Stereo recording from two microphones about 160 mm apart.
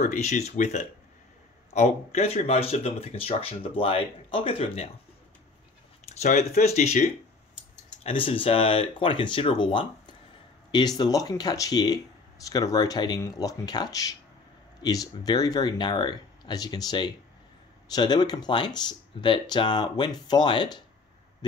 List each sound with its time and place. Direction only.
0.0 s speech: 45° left (ahead or behind)
6.0 s a sound: 45° left (ahead or behind)
6.6 s speech: 45° left (ahead or behind)